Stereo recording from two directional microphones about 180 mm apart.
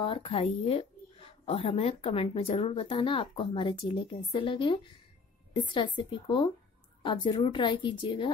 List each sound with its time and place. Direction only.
0.0 s speech: 30° left (ahead or behind)